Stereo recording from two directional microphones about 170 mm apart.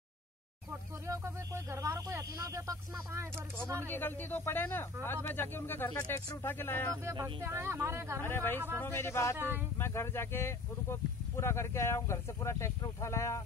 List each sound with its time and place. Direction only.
0.7 s speech: 15° right (ahead or behind)
3.9 s speech: 10° left (ahead or behind)
7.1 s speech: 20° right (ahead or behind)
8.2 s speech: 10° left (ahead or behind)